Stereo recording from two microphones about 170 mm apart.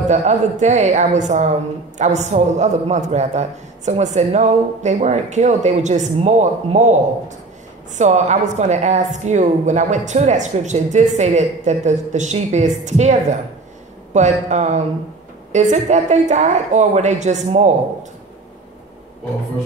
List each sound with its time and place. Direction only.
0.1 s a man's voice: 45° right (ahead or behind)